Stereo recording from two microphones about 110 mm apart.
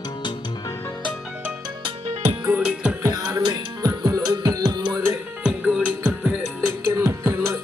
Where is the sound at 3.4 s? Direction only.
40° right (ahead or behind).